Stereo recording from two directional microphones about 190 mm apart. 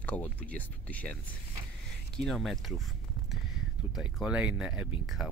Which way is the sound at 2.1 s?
Centre (ahead or behind).